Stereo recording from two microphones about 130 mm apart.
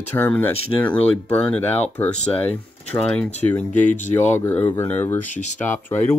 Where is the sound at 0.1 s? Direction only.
15° left (ahead or behind).